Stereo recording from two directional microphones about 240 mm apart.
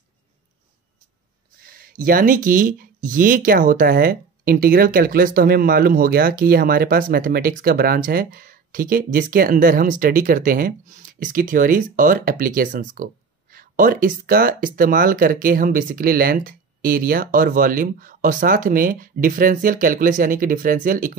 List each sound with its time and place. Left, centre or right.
1.7 s speech: right